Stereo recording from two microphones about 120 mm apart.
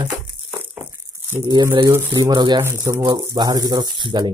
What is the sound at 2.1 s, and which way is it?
Speech, 40° right (ahead or behind).